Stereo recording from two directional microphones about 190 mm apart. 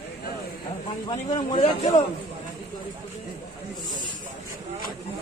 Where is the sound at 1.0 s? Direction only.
25° left (ahead or behind).